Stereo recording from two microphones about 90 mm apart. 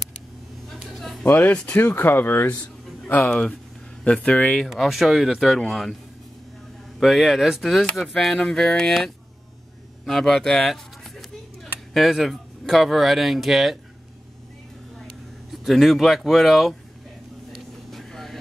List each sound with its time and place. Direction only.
0.7 s a sound: centre (ahead or behind)
1.2 s speech: 20° left (ahead or behind)
3.3 s speech: 10° left (ahead or behind)
4.6 s speech: centre (ahead or behind)
7.0 s speech: centre (ahead or behind)
15.5 s speech: centre (ahead or behind)
17.5 s vehicle: 5° left (ahead or behind)